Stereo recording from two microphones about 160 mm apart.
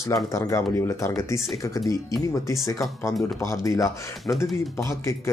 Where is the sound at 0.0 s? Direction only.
20° left (ahead or behind).